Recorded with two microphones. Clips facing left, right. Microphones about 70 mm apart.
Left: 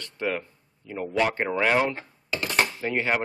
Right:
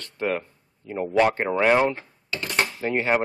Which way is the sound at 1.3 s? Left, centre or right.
Centre.